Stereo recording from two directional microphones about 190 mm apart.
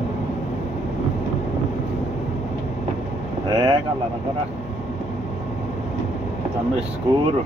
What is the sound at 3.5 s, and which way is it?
Speech, 25° right (ahead or behind).